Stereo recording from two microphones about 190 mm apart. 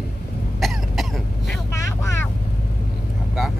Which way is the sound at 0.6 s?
Centre (ahead or behind).